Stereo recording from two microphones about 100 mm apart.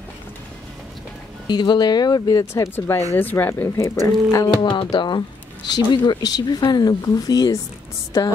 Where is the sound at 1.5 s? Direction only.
45° left (ahead or behind).